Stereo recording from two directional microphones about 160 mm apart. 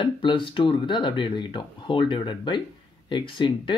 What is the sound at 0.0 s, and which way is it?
Speech, 30° left (ahead or behind).